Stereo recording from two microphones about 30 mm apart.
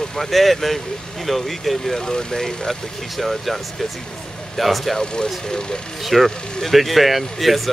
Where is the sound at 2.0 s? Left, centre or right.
Centre.